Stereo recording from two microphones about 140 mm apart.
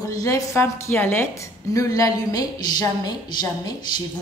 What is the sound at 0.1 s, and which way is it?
A woman's voice, 25° left (ahead or behind).